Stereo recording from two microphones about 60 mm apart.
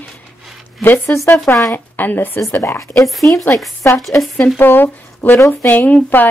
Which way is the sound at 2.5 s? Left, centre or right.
Left.